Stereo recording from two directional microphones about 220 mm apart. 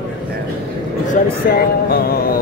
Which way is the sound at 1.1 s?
45° left (ahead or behind).